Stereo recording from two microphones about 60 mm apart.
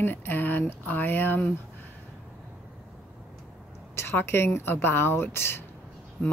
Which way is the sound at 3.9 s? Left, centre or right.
Left.